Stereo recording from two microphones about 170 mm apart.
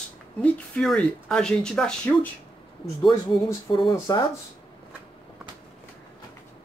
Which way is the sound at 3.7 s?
30° left (ahead or behind).